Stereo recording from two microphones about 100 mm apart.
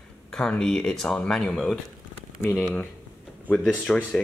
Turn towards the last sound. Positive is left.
turn(degrees=15)  # may be behind; listen again after turning